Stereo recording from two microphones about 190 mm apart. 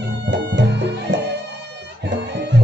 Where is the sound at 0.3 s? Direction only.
65° right (ahead or behind).